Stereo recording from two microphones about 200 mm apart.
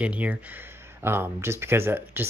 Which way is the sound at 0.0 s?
5° right (ahead or behind).